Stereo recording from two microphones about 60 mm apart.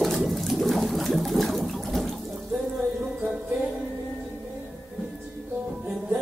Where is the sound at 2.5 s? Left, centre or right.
Centre.